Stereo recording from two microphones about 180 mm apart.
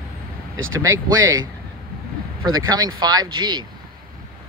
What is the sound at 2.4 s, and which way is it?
Speech, 20° right (ahead or behind).